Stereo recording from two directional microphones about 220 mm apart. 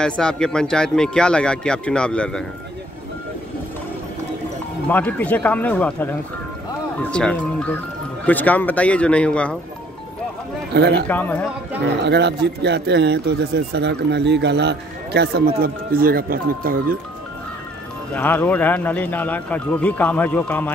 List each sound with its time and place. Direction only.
0.0 s speech: 5° left (ahead or behind)
4.8 s speech: 5° left (ahead or behind)
10.7 s a man's voice: 50° right (ahead or behind)
11.1 s speech: 10° left (ahead or behind)
12.0 s a man's voice: 50° right (ahead or behind)
18.1 s speech: 10° left (ahead or behind)